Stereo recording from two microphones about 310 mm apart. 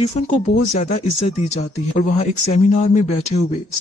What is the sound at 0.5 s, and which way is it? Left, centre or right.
Speech, left.